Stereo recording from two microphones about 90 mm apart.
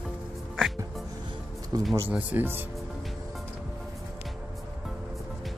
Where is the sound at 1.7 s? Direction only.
50° right (ahead or behind).